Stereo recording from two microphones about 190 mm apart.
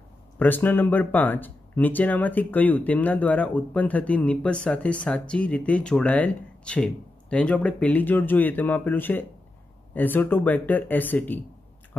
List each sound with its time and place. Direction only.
0.4 s speech: 10° left (ahead or behind)